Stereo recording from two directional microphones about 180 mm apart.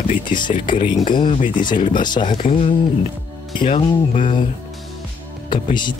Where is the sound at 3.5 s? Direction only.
30° left (ahead or behind).